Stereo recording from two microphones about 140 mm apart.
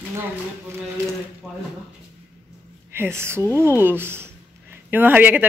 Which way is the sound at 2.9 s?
15° right (ahead or behind).